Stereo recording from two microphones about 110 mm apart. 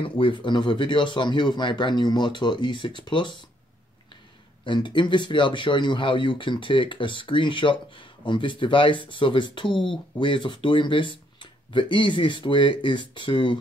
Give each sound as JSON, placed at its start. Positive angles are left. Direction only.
{"t": 0.0, "sound": "speech", "side_deg": 50}
{"t": 4.6, "sound": "speech", "side_deg": 45}